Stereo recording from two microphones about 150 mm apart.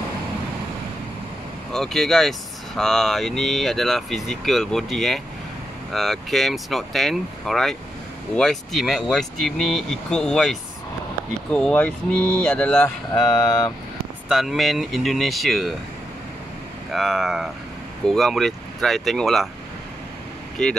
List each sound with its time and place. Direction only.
1.7 s speech: centre (ahead or behind)
13.1 s speech: 20° left (ahead or behind)
14.3 s speech: centre (ahead or behind)
16.9 s speech: centre (ahead or behind)
20.6 s speech: 5° left (ahead or behind)